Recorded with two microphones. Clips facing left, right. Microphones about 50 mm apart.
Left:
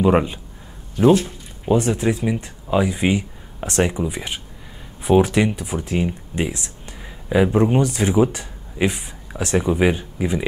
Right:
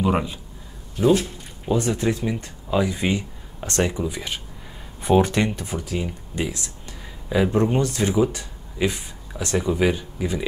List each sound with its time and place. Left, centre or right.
1.0 s speech: left
5.0 s speech: centre
5.8 s speech: left